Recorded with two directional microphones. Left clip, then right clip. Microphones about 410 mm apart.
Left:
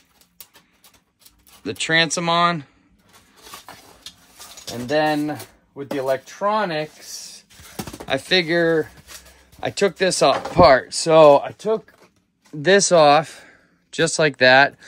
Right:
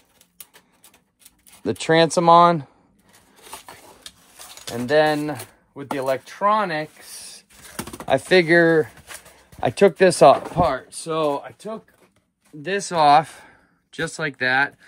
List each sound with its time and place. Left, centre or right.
1.6 s speech: centre
4.6 s speech: centre
7.2 s a sound: centre
9.6 s speech: centre
10.6 s speech: centre
11.1 s speech: left
12.6 s speech: centre